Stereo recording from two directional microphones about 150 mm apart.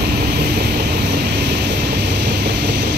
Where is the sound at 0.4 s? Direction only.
90° right.